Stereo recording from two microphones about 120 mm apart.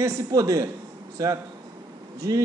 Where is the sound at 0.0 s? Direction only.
25° right (ahead or behind).